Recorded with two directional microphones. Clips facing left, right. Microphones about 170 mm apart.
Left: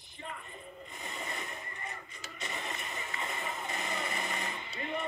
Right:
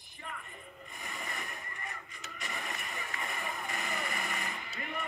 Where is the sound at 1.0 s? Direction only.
25° left (ahead or behind).